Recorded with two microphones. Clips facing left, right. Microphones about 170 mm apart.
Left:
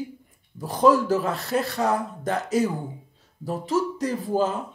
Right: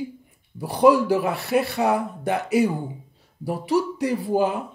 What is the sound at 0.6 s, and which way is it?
Speech, 15° right (ahead or behind).